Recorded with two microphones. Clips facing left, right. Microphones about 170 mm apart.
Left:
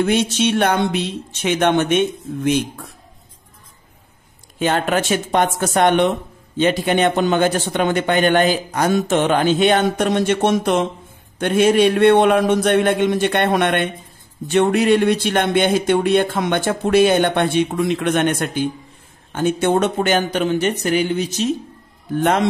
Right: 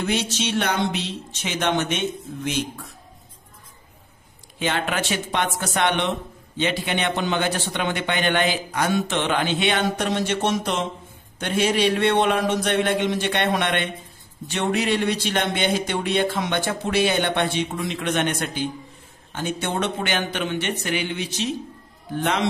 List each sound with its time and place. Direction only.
0.0 s speech: 55° left (ahead or behind)
4.6 s speech: 45° left (ahead or behind)